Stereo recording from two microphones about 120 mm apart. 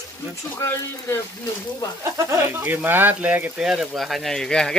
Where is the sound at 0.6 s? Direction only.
25° left (ahead or behind).